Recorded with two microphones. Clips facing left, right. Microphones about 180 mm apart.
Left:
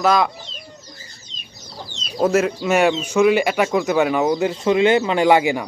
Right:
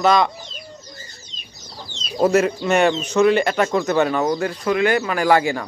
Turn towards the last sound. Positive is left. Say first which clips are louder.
# left 2 dB
turn(degrees=15)  # may be behind; listen again after turning